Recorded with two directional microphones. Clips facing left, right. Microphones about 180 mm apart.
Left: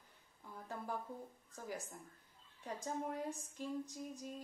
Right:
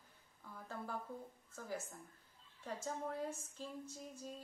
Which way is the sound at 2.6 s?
15° left (ahead or behind).